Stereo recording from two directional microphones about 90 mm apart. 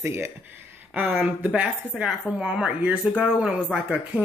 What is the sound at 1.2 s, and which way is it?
A woman's voice, 15° right (ahead or behind).